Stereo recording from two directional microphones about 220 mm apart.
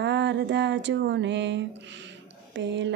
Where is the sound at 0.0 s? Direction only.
55° right (ahead or behind).